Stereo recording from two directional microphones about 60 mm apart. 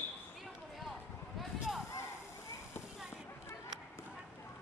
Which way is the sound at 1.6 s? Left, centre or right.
Centre.